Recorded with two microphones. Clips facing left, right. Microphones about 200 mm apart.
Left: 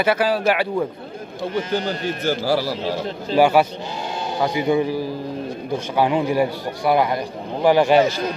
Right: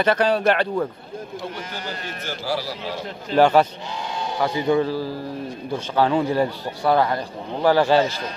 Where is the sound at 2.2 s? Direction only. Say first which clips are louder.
Left 6 dB; 35° left (ahead or behind).